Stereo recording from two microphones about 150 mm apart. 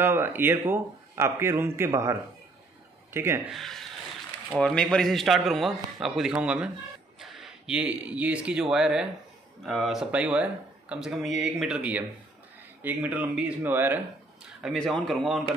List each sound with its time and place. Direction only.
0.0 s a man's voice: 15° right (ahead or behind)
3.4 s a man's voice: centre (ahead or behind)
14.6 s speech: centre (ahead or behind)